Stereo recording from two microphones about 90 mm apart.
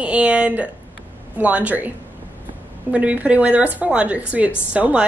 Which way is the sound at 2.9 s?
15° right (ahead or behind).